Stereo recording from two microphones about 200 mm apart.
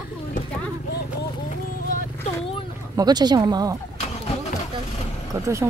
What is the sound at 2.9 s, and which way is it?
Speech, 20° right (ahead or behind).